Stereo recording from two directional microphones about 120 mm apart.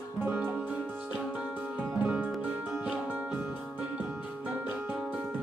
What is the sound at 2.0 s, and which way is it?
Music, 10° right (ahead or behind).